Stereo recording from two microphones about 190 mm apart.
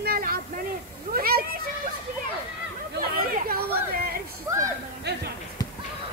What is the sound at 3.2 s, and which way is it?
Speech, 50° right (ahead or behind).